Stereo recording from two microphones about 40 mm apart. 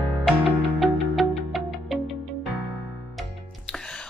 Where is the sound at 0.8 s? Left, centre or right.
Centre.